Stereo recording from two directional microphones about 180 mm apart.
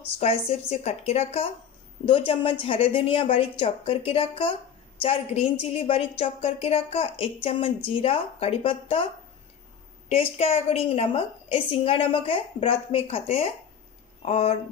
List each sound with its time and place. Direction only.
0.0 s a woman's voice: 35° left (ahead or behind)